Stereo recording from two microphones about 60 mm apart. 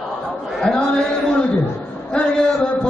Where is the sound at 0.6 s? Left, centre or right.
Centre.